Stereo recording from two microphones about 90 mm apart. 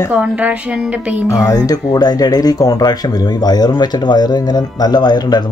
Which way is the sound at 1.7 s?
45° left (ahead or behind).